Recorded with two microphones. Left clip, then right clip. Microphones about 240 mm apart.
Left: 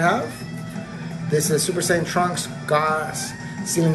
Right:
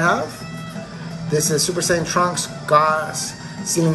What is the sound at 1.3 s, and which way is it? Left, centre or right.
A man's voice, centre.